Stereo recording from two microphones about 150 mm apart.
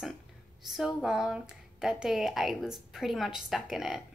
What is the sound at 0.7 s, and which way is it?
A woman's voice, 5° right (ahead or behind).